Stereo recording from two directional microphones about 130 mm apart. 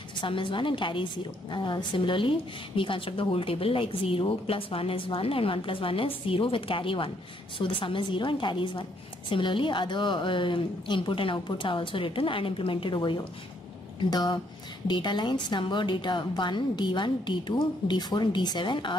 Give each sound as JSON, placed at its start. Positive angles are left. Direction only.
{"t": 0.2, "sound": "a woman's voice", "side_deg": 40}